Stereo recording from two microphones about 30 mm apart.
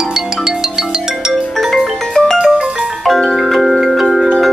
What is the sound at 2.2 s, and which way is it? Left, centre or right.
Music, left.